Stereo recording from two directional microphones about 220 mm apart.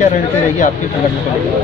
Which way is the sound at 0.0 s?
35° left (ahead or behind).